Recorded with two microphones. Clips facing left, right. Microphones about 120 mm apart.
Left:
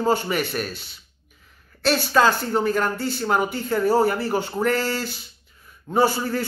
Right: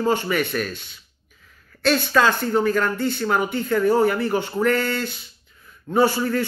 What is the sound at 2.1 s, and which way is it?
A man's voice, 30° left (ahead or behind).